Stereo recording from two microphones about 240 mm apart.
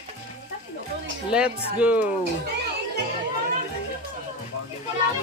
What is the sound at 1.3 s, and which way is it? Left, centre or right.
Speech, centre.